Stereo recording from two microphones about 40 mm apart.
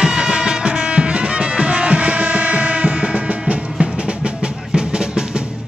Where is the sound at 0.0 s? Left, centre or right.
Right.